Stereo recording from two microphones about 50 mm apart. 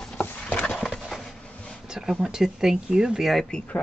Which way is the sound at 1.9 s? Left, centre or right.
Centre.